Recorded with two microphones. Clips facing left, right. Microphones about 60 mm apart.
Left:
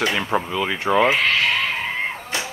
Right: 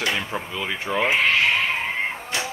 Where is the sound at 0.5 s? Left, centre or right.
Left.